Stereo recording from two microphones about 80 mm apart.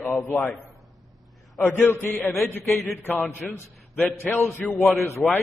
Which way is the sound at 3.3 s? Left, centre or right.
Left.